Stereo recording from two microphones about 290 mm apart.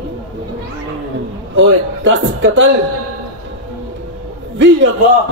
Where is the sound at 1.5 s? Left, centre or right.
Right.